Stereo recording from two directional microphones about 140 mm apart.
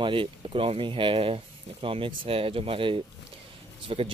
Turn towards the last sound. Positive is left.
turn(degrees=-35)  # may be behind; listen again after turning